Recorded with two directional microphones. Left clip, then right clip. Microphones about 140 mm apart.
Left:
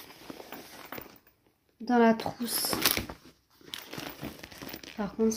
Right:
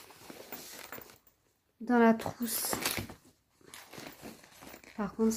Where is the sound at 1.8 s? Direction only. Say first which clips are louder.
Left 2 dB; 10° right (ahead or behind).